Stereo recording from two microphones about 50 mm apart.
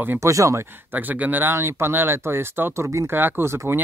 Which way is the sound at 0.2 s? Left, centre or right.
Right.